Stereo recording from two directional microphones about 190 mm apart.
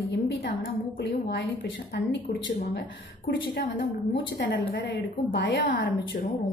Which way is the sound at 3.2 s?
60° left (ahead or behind).